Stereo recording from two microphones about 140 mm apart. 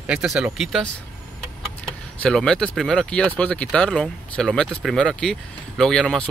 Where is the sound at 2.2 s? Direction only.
5° left (ahead or behind).